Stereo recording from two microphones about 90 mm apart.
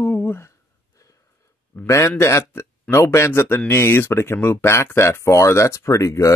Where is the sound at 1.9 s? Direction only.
30° left (ahead or behind).